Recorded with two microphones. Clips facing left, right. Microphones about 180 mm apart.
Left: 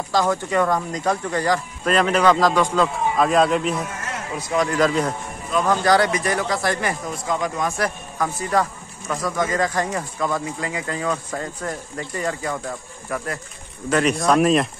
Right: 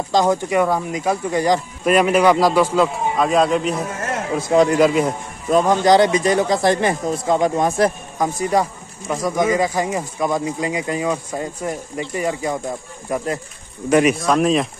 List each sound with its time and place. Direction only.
0.1 s speech: 20° right (ahead or behind)
5.7 s speech: 20° right (ahead or behind)
14.1 s speech: centre (ahead or behind)